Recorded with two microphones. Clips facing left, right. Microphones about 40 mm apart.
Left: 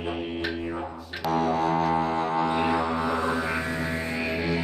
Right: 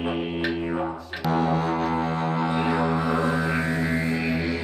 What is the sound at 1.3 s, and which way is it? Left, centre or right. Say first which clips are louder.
Music: right 1 dB; centre.